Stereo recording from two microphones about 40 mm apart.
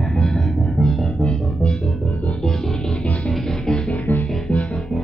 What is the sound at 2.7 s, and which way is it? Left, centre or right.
Music, left.